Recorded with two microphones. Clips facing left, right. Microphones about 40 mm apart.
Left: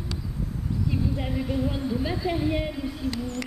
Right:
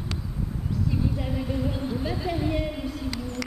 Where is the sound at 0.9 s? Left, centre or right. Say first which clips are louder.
Even; centre.